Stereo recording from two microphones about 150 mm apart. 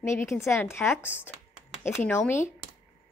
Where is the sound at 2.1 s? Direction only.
15° left (ahead or behind).